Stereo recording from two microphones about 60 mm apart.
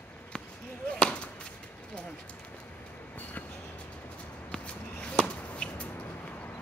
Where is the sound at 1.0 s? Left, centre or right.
Centre.